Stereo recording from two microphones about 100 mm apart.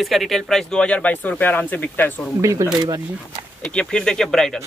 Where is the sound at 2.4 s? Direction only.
30° right (ahead or behind).